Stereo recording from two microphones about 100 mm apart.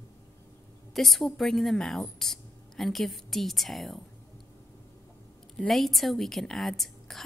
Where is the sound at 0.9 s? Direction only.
Centre (ahead or behind).